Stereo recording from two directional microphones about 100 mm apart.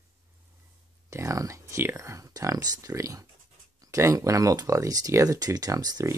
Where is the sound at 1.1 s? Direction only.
35° right (ahead or behind).